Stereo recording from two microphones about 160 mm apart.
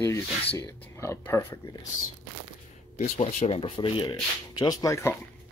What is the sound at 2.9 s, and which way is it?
Speech, 45° left (ahead or behind).